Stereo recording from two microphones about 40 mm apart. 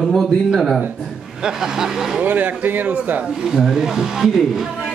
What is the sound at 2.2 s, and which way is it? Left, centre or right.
A man's voice, right.